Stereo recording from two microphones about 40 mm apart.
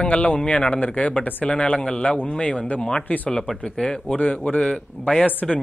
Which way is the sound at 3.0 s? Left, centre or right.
Left.